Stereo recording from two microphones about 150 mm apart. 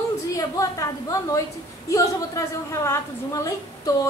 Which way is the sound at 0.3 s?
20° left (ahead or behind).